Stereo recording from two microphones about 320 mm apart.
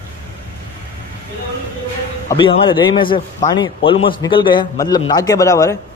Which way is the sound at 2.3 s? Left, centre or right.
Centre.